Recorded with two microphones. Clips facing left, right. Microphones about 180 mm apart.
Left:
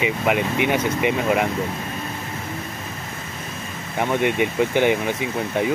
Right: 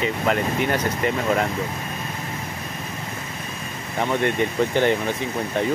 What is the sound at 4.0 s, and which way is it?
Speech, 10° left (ahead or behind).